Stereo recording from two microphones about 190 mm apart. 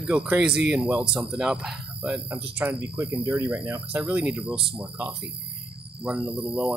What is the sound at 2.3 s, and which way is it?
Speech, 15° right (ahead or behind).